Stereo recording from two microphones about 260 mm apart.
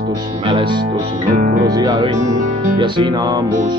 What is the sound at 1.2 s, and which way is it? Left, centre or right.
Music, right.